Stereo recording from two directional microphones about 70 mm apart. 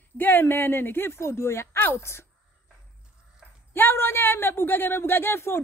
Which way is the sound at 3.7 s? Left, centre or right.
Left.